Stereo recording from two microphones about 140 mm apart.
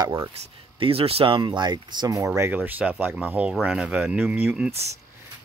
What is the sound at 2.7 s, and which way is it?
Speech, 10° right (ahead or behind).